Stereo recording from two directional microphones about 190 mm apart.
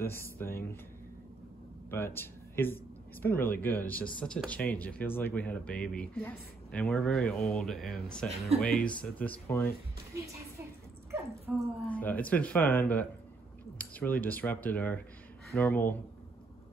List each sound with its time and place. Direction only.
0.0 s speech: 10° left (ahead or behind)
1.9 s speech: 10° left (ahead or behind)
11.5 s speech: centre (ahead or behind)
11.9 s speech: 10° left (ahead or behind)